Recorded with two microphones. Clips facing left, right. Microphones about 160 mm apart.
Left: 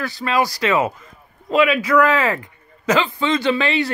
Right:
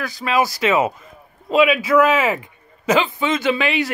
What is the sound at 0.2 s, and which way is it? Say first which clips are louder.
Speech: right 1 dB; 15° right (ahead or behind).